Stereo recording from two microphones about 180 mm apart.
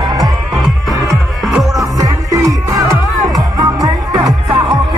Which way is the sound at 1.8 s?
20° right (ahead or behind).